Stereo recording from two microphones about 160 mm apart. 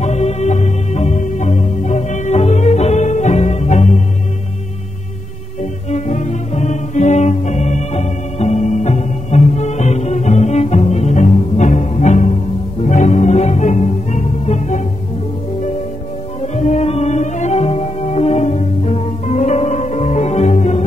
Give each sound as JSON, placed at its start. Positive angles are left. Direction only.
{"t": 0.0, "sound": "music", "side_deg": 45}
{"t": 5.6, "sound": "music", "side_deg": 50}
{"t": 16.5, "sound": "music", "side_deg": 45}